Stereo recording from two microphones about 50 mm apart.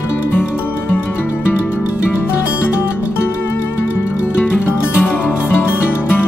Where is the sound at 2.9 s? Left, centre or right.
Left.